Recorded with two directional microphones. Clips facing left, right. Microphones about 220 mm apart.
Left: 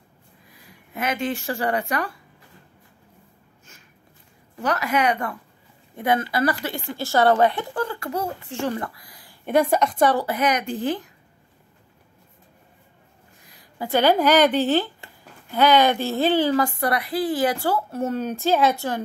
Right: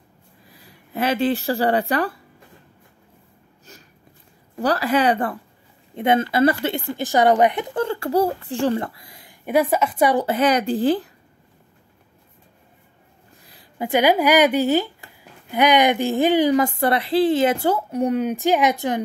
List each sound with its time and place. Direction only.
0.5 s speech: 35° right (ahead or behind)
4.6 s a child's voice: 35° right (ahead or behind)
9.5 s a woman's voice: 5° right (ahead or behind)
10.2 s speech: 30° right (ahead or behind)
13.7 s a woman's voice: 15° right (ahead or behind)